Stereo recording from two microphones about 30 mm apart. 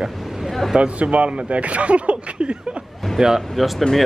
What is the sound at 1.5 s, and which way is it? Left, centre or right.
Speech, right.